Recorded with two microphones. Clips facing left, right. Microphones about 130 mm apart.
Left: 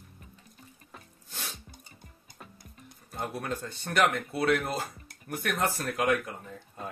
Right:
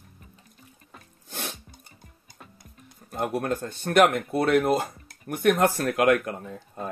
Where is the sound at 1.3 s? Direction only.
60° right (ahead or behind).